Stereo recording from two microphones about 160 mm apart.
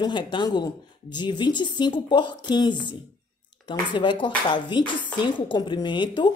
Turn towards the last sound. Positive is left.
turn(degrees=30)  # may be behind; listen again after turning